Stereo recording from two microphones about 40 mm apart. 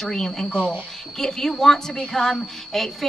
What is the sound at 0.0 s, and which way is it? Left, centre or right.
Speech, centre.